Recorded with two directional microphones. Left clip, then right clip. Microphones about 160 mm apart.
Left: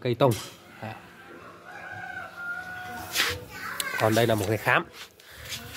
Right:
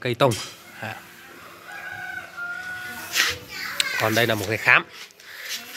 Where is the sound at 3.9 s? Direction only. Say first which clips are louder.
Right 1 dB; 10° left (ahead or behind).